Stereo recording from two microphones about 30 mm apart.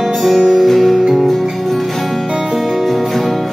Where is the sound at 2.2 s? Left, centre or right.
Centre.